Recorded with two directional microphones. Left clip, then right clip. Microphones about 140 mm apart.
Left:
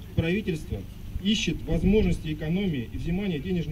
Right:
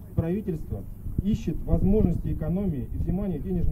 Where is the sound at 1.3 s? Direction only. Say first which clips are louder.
Left 5 dB; 40° right (ahead or behind).